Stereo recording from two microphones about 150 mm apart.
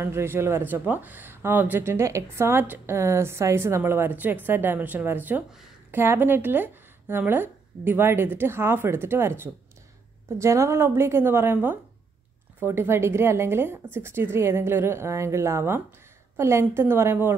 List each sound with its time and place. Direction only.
0.0 s speech: 15° right (ahead or behind)